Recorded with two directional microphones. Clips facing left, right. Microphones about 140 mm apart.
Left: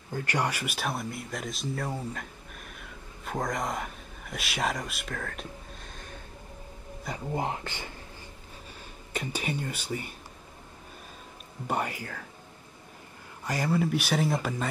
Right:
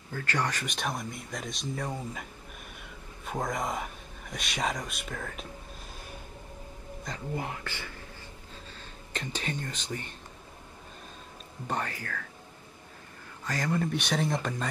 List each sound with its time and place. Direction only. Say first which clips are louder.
0.1 s speech: left 2 dB; 15° left (ahead or behind); by 5.5 s 5° right (ahead or behind)
7.3 s speech: left 6 dB; 25° left (ahead or behind)
8.7 s speech: left 4 dB; 10° left (ahead or behind)
11.6 s speech: left 3 dB; 10° left (ahead or behind)
13.4 s speech: left 3 dB; 10° left (ahead or behind)